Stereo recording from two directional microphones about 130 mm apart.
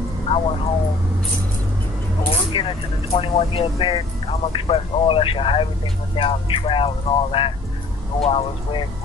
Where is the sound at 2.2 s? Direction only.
45° left (ahead or behind).